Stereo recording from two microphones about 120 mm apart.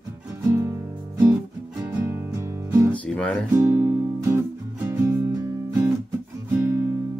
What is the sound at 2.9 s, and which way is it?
Music, 5° left (ahead or behind).